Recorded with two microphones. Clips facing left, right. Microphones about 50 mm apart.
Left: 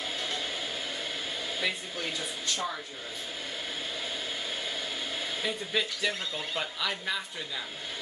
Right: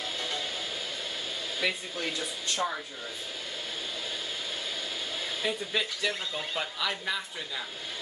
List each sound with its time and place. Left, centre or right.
1.6 s speech: centre
2.5 s speech: centre
5.4 s speech: centre